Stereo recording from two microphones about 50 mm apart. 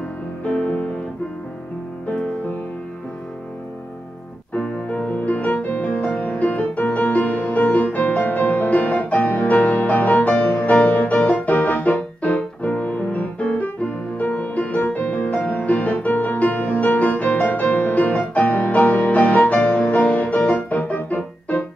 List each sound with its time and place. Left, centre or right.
0.4 s music: left
2.1 s music: left
4.8 s music: left